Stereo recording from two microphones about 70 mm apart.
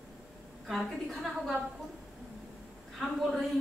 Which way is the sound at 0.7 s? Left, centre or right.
Centre.